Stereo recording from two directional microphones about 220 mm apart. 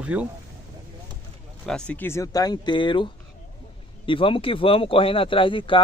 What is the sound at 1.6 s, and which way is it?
Speech, 5° left (ahead or behind).